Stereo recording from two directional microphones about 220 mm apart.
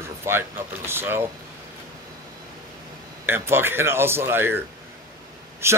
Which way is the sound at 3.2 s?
10° right (ahead or behind).